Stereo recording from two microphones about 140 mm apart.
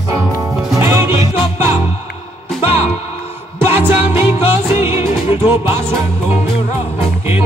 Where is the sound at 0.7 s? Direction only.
15° right (ahead or behind).